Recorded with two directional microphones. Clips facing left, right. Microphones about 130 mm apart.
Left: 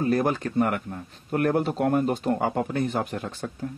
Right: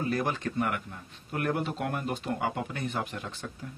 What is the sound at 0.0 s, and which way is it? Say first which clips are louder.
Speech: left 6 dB; 40° left (ahead or behind).